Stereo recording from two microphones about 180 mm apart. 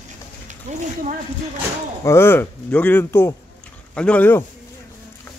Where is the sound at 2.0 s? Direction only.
15° left (ahead or behind).